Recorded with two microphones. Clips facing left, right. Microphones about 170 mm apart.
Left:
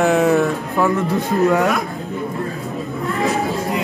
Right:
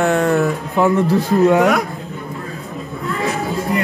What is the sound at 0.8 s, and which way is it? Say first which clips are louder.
Speech: right 4 dB; 20° right (ahead or behind).